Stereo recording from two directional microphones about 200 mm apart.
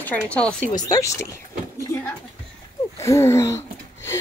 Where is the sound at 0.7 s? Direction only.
20° left (ahead or behind).